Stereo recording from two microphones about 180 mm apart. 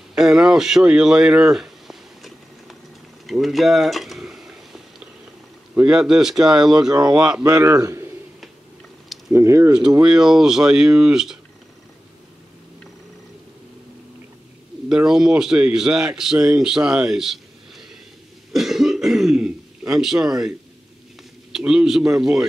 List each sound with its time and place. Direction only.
0.1 s a sound: 5° right (ahead or behind)
5.8 s a man's voice: 5° right (ahead or behind)
6.9 s speech: 20° right (ahead or behind)
7.2 s a man's voice: 5° right (ahead or behind)
7.4 s a man's voice: 20° right (ahead or behind)
9.3 s a man's voice: 15° right (ahead or behind)
10.0 s a man's voice: 5° right (ahead or behind)
14.9 s a man's voice: 5° right (ahead or behind)
18.5 s cough: centre (ahead or behind)
21.5 s a man's voice: 5° right (ahead or behind)